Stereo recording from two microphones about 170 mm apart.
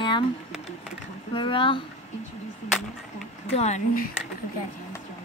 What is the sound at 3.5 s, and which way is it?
Speech, 40° left (ahead or behind).